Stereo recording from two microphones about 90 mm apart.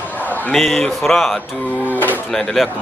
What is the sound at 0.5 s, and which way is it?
Speech, centre (ahead or behind).